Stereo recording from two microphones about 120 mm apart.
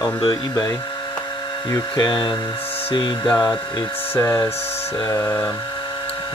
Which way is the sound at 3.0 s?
35° left (ahead or behind).